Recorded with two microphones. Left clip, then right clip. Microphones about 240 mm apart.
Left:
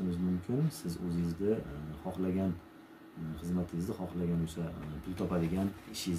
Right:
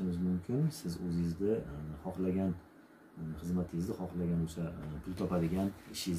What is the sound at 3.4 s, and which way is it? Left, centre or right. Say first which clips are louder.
Speech: even; centre.